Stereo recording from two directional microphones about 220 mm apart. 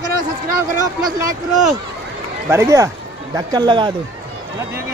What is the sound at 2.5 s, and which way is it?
Speech, 15° right (ahead or behind).